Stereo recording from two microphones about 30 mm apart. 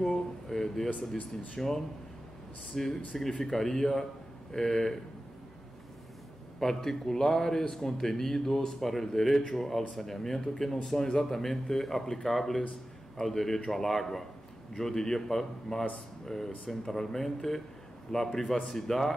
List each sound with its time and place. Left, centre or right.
0.0 s speech: centre
6.6 s speech: centre